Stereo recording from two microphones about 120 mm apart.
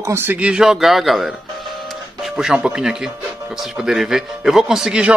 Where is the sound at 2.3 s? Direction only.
5° right (ahead or behind).